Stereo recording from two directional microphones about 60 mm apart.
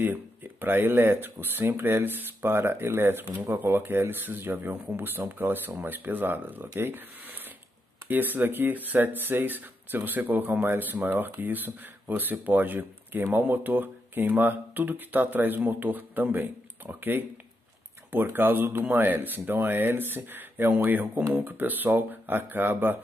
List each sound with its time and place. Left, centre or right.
0.0 s speech: right